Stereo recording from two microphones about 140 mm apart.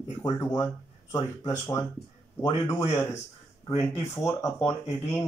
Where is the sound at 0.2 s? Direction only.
25° left (ahead or behind).